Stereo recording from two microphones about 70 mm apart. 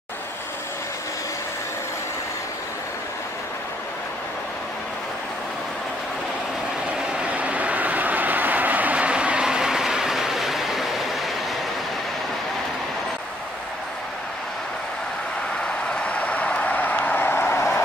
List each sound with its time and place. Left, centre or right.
7.1 s vehicle: centre
15.9 s vehicle: centre; by 17.8 s left